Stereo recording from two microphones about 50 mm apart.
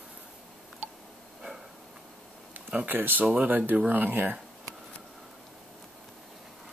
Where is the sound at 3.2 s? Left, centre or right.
Right.